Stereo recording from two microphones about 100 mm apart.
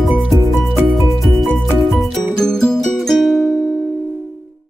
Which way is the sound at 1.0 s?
Centre (ahead or behind).